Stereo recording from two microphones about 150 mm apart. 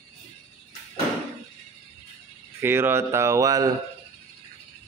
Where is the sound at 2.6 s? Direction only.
15° right (ahead or behind).